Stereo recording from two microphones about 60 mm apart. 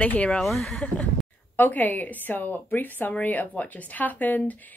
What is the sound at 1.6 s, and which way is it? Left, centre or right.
A woman's voice, left.